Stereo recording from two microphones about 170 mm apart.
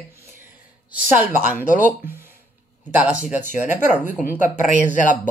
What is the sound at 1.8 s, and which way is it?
Speech, 60° left (ahead or behind).